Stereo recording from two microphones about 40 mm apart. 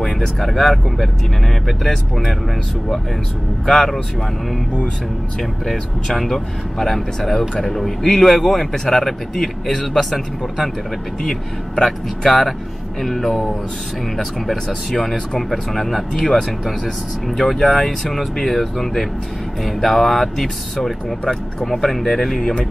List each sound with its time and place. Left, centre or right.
0.0 s speech: centre
3.6 s speech: centre
5.4 s speech: centre
11.8 s speech: centre
13.0 s speech: centre
22.4 s speech: left